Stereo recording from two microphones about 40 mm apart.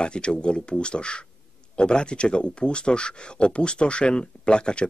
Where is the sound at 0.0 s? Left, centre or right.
Left.